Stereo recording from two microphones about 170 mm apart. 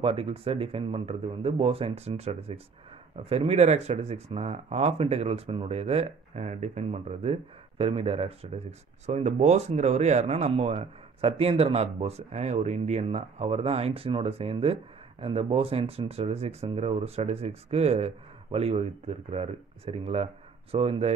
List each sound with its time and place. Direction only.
0.0 s speech: 35° right (ahead or behind)